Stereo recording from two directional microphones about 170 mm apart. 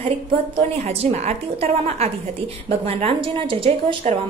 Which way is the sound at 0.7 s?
40° right (ahead or behind).